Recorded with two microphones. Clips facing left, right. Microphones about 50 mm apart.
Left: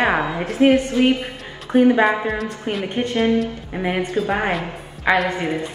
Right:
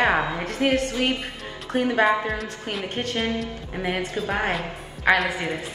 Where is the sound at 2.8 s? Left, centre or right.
Left.